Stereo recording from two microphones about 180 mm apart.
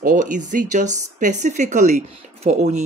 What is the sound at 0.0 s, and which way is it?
Speech, 45° right (ahead or behind).